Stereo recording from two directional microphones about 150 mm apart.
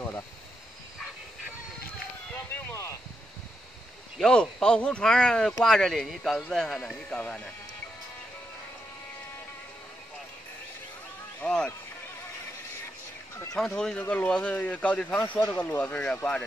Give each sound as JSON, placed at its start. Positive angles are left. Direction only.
{"t": 2.3, "sound": "a sound", "side_deg": 15}
{"t": 4.2, "sound": "speech", "side_deg": 5}
{"t": 11.4, "sound": "speech", "side_deg": 5}
{"t": 13.7, "sound": "speech", "side_deg": 5}